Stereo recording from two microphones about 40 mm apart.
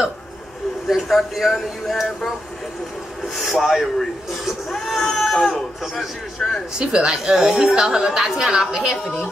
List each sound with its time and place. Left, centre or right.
0.8 s speech: centre
3.5 s speech: centre
6.7 s speech: centre
7.4 s a woman's voice: centre
7.7 s a woman's voice: centre